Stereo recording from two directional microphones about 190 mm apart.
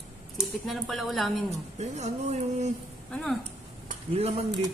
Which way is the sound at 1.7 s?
35° right (ahead or behind).